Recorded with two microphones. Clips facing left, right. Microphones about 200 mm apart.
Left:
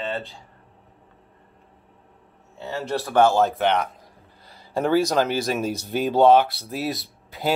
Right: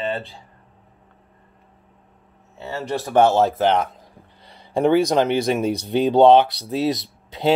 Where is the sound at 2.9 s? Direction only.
20° right (ahead or behind).